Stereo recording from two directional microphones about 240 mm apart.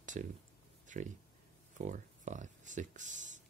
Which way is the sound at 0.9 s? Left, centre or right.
Right.